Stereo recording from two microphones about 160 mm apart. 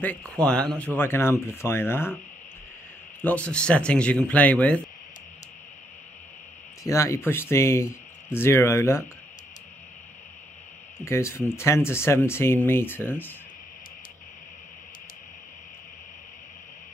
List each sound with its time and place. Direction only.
0.0 s speech: 10° left (ahead or behind)
3.2 s speech: 10° left (ahead or behind)
6.8 s speech: 20° left (ahead or behind)
11.0 s speech: 15° left (ahead or behind)